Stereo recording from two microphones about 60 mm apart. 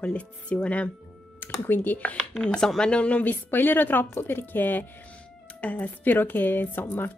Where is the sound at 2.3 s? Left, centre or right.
Centre.